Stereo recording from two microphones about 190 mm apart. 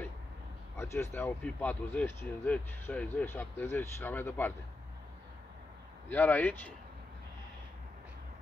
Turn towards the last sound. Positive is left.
turn(degrees=10)  # may be behind; listen again after turning